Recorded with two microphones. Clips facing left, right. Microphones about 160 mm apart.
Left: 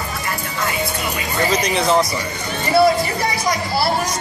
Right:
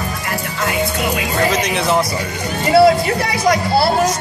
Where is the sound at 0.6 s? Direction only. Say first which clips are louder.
Right 5 dB; 80° right.